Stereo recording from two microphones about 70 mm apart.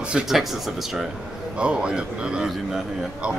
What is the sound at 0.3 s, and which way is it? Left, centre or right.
A man's voice, centre.